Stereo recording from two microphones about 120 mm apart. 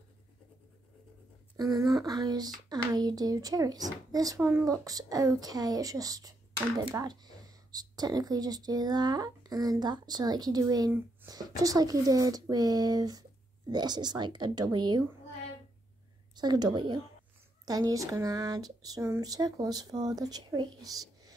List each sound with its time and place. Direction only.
1.6 s speech: 30° right (ahead or behind)
16.3 s speech: 35° right (ahead or behind)